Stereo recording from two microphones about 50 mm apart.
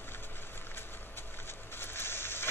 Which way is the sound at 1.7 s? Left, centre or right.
Left.